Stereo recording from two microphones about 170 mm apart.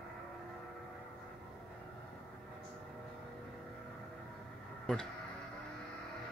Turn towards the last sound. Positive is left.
turn(degrees=5)  # may be behind; listen again after turning